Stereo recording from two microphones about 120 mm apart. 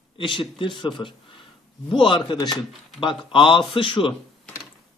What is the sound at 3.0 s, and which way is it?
Speech, 45° left (ahead or behind).